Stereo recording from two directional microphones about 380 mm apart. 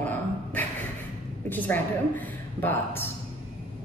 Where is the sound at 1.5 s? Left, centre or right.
Centre.